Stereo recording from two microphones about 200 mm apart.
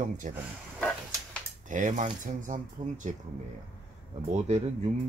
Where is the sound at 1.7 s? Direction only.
40° right (ahead or behind).